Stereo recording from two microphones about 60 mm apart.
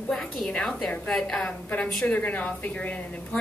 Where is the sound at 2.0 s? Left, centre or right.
Left.